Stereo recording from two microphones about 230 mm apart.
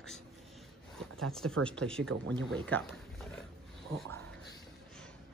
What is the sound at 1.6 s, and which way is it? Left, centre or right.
Speech, centre.